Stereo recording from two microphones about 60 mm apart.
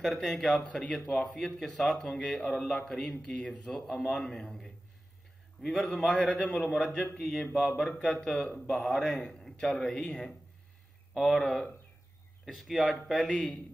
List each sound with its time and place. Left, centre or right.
0.0 s a man's voice: centre
0.7 s speech: centre
1.3 s a man's voice: centre
2.4 s speech: centre
2.7 s a man's voice: centre
6.1 s a man's voice: centre
6.8 s a man's voice: centre